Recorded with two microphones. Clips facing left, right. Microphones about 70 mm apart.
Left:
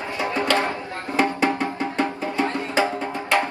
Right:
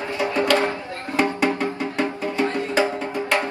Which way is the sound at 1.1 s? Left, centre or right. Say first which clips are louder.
Even; left.